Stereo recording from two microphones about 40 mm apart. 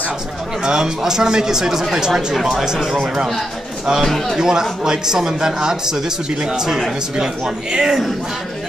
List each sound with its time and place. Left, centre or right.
0.7 s speech: centre
4.4 s speech: centre